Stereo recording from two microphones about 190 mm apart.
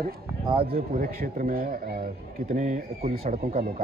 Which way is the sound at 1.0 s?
50° right (ahead or behind).